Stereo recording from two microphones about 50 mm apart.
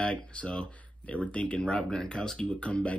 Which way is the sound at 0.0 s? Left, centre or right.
Left.